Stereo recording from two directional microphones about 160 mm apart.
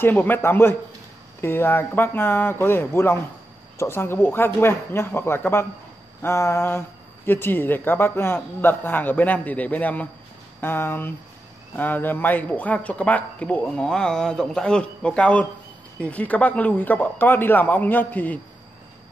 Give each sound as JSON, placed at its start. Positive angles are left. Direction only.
{"t": 0.0, "sound": "speech", "side_deg": 10}